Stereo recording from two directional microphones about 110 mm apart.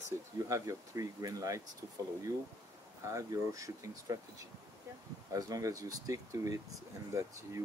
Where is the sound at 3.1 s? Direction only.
30° right (ahead or behind).